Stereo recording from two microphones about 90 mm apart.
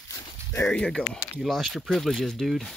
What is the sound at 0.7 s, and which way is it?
Speech, 10° left (ahead or behind).